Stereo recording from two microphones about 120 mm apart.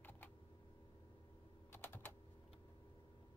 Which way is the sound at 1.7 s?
20° left (ahead or behind).